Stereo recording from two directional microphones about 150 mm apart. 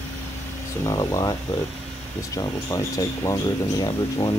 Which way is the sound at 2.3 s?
20° left (ahead or behind).